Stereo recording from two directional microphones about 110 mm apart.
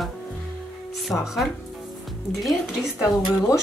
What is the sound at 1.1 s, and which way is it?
Speech, 5° left (ahead or behind).